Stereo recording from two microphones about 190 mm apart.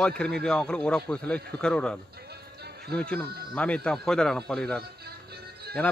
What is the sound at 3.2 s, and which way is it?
Speech, 55° right (ahead or behind).